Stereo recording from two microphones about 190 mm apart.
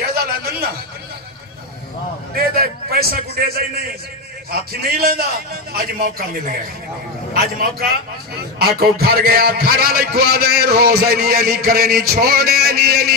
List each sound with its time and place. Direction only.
0.1 s a sound: 55° right (ahead or behind)
2.3 s a man's voice: 55° right (ahead or behind)
8.5 s a man's voice: 55° right (ahead or behind)